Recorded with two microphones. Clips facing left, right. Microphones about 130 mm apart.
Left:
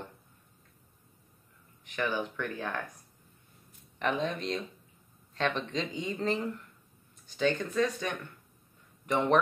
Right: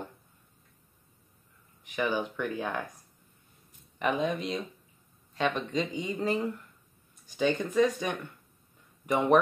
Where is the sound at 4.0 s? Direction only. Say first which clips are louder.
Right 2 dB; 10° right (ahead or behind).